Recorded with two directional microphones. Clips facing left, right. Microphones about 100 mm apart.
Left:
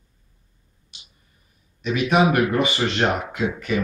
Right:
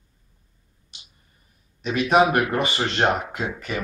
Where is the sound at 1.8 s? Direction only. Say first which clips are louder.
Right 1 dB; 35° right (ahead or behind).